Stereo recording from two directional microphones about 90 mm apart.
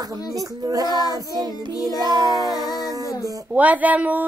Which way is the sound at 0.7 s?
45° right (ahead or behind).